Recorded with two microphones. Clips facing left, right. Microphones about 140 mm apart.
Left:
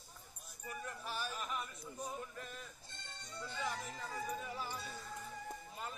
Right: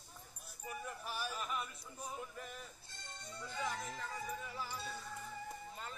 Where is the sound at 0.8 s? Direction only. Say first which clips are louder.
Left 1 dB; 10° right (ahead or behind).